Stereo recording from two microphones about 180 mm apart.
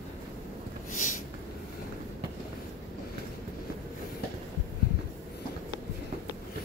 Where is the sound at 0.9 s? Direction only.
45° left (ahead or behind).